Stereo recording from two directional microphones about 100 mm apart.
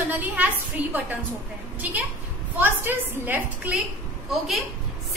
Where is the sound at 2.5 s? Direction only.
20° right (ahead or behind).